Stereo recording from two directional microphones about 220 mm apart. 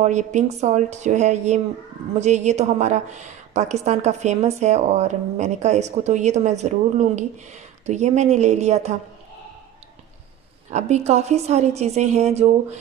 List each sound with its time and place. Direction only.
0.0 s a woman's voice: 30° right (ahead or behind)
10.7 s a woman's voice: 30° right (ahead or behind)